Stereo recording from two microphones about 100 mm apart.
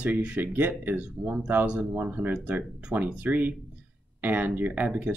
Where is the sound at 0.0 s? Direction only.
10° right (ahead or behind).